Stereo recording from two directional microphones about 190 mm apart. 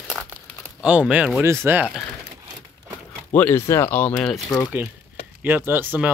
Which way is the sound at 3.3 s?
10° left (ahead or behind).